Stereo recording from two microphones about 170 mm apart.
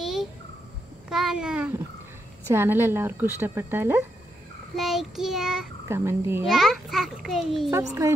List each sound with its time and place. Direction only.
0.0 s a sound: centre (ahead or behind)
1.1 s a child's voice: 5° right (ahead or behind)
4.7 s a child's voice: centre (ahead or behind)
5.9 s a woman's voice: 15° right (ahead or behind)
6.4 s a child's voice: centre (ahead or behind)